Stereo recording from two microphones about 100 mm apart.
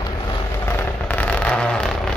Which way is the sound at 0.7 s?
20° left (ahead or behind).